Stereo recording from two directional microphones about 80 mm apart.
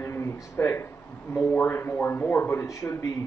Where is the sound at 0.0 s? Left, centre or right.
Left.